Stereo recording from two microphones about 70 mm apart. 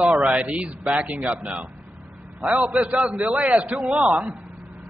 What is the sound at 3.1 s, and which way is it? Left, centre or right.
A man's voice, centre.